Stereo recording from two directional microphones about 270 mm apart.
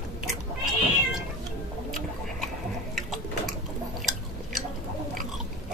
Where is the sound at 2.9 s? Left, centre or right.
Centre.